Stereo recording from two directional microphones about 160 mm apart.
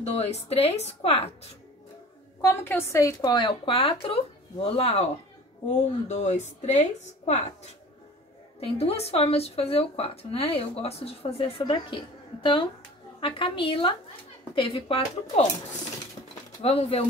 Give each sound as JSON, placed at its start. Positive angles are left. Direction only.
{"t": 0.0, "sound": "speech", "side_deg": 40}
{"t": 2.4, "sound": "a woman's voice", "side_deg": 15}
{"t": 13.2, "sound": "speech", "side_deg": 35}
{"t": 16.6, "sound": "speech", "side_deg": 40}